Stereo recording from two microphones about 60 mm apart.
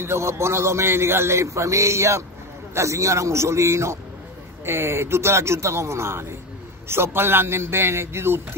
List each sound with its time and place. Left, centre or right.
0.0 s a man's voice: right